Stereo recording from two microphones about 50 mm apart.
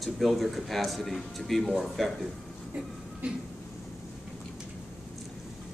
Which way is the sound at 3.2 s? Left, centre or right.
Right.